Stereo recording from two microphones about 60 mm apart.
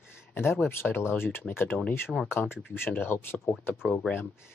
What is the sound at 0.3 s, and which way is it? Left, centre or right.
Speech, left.